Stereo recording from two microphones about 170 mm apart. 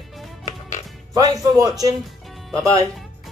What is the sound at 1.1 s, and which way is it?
Speech, 20° right (ahead or behind).